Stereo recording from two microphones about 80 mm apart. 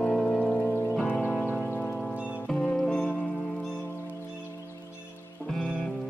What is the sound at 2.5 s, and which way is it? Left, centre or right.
Music, centre.